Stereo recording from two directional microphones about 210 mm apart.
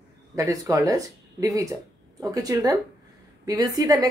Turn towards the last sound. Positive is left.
turn(degrees=-15)  # may be behind; listen again after turning